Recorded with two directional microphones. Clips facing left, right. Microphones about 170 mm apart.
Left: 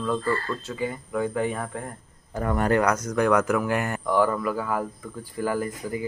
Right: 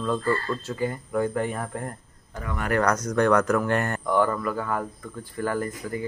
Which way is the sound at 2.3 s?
40° left (ahead or behind).